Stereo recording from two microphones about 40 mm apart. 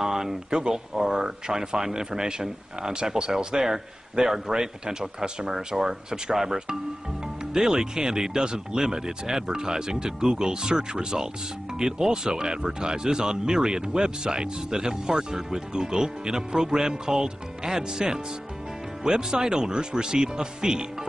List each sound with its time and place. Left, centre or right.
0.0 s speech: centre